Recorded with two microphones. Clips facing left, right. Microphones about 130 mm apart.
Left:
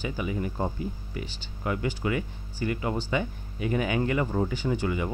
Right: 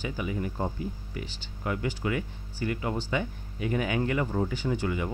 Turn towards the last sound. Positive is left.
turn(degrees=20)  # may be behind; listen again after turning